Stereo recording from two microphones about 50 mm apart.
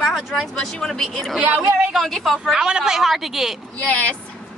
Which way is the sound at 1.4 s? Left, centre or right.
Right.